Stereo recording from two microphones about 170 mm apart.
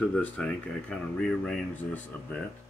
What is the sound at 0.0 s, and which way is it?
Speech, 5° left (ahead or behind).